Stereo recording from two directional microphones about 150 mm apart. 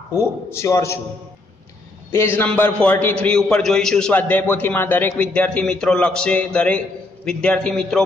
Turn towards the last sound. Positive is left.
turn(degrees=5)  # may be behind; listen again after turning